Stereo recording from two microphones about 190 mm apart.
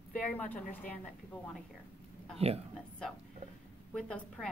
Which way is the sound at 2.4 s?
30° right (ahead or behind).